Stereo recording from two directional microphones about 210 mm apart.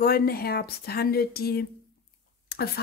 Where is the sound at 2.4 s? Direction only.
50° left (ahead or behind).